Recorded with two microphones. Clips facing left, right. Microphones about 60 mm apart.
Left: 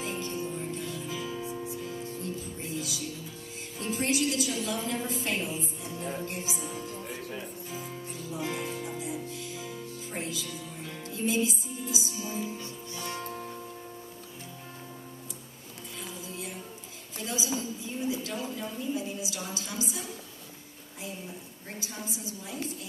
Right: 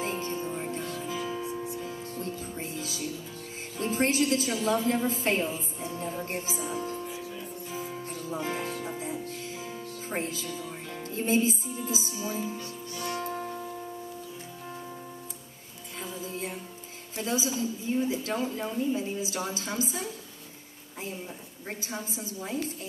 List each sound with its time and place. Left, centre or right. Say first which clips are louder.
0.0 s music: right 2 dB; right
1.1 s music: right 4 dB; right
1.4 s music: right 2 dB; centre
1.8 s music: right 1 dB; right
3.7 s a woman's voice: right 3 dB; right
6.6 s music: right 4 dB; right
12.3 s speech: right 3 dB; right
13.2 s music: right 4 dB; right
16.0 s music: right 5 dB; right
17.2 s a woman's voice: right 4 dB; right
21.6 s a woman's voice: right 3 dB; right